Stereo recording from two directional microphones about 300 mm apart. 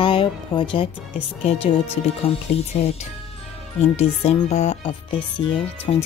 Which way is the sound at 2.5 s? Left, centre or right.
Left.